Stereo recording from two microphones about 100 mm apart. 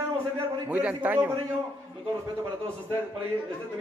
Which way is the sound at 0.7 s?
15° right (ahead or behind).